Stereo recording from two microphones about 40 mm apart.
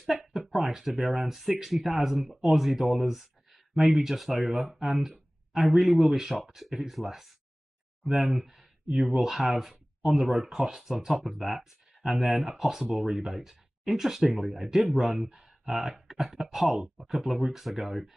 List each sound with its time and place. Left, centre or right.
0.0 s a sound: centre
0.6 s speech: centre
10.0 s speech: centre